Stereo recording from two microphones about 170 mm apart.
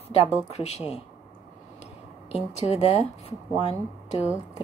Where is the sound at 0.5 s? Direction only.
40° left (ahead or behind).